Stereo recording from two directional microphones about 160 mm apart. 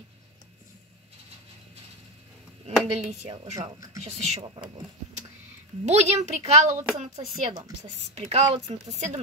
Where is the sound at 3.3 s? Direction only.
35° right (ahead or behind).